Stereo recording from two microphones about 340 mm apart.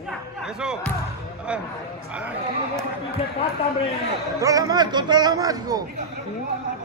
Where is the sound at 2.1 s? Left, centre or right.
Centre.